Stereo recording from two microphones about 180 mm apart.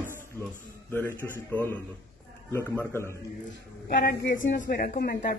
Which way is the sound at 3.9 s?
65° left (ahead or behind).